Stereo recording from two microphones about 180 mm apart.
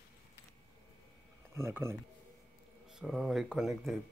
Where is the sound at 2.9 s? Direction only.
5° right (ahead or behind).